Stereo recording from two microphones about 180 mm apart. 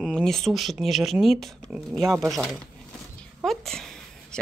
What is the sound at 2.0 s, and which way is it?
Speech, 15° right (ahead or behind).